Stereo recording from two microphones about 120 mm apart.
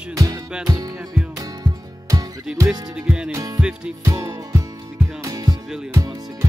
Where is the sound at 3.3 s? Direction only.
30° right (ahead or behind).